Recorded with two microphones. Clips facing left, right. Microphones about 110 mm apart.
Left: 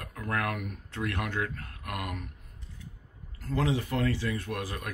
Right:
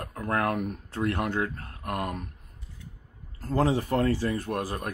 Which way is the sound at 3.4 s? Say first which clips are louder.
Right 4 dB; 40° right (ahead or behind).